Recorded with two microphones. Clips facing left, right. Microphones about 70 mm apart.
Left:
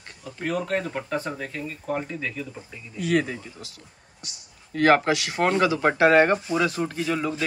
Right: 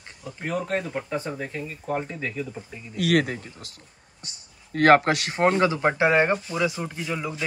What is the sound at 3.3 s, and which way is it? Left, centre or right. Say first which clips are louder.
Speech: right 1 dB; right.